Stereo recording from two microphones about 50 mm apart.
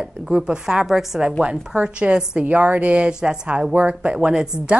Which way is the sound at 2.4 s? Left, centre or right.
Right.